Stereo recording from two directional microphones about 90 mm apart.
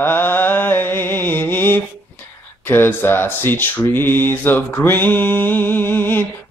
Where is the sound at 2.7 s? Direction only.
25° left (ahead or behind).